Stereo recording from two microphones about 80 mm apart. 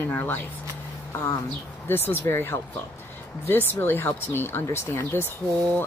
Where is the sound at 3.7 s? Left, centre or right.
Left.